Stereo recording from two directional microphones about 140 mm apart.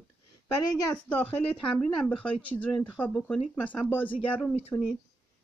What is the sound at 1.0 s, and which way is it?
Speech, 10° left (ahead or behind).